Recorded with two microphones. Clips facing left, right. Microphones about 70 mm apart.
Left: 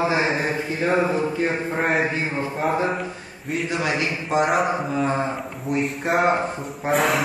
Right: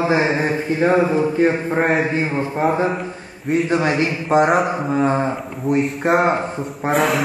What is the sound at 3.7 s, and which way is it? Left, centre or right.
Speech, right.